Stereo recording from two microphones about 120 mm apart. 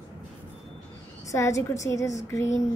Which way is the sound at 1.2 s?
25° left (ahead or behind).